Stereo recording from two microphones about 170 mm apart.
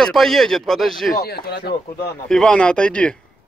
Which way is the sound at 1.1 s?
65° left (ahead or behind).